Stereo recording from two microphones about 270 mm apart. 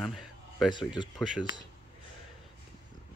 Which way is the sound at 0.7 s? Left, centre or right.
Centre.